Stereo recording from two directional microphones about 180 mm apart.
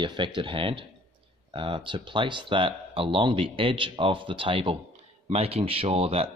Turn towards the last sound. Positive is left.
turn(degrees=-30)  # may be behind; listen again after turning